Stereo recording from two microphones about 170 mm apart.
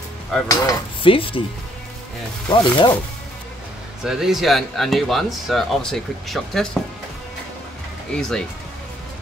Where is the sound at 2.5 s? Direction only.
30° left (ahead or behind).